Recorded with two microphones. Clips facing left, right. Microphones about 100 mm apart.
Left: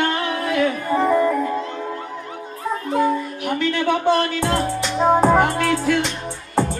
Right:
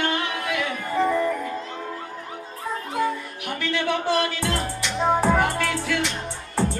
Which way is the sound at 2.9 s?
45° left (ahead or behind).